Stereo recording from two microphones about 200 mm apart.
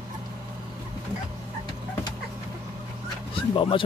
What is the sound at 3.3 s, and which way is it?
Speech, 25° left (ahead or behind).